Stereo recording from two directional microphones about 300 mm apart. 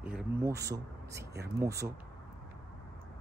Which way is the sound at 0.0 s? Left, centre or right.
Centre.